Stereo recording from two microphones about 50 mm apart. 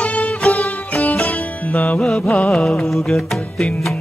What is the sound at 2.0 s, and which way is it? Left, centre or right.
Music, centre.